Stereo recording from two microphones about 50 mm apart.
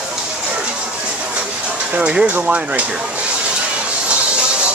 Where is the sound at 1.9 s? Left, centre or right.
Right.